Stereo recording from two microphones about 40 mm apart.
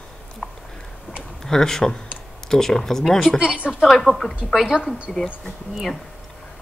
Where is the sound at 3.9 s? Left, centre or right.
Centre.